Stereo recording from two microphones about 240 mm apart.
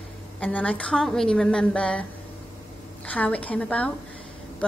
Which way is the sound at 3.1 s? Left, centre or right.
Centre.